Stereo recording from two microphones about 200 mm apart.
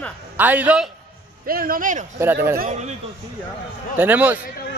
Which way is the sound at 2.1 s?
10° right (ahead or behind).